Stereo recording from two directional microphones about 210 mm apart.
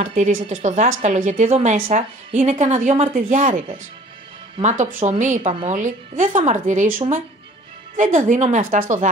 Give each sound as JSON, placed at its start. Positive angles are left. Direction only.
{"t": 0.0, "sound": "a woman's voice", "side_deg": -35}
{"t": 8.0, "sound": "a woman's voice", "side_deg": -35}